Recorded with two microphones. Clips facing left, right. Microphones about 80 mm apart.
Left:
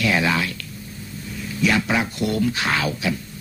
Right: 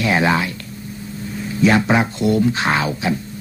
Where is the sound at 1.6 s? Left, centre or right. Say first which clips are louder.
Right 5 dB; right.